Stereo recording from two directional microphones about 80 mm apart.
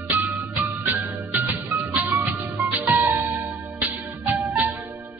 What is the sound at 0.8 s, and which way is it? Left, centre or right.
Music, right.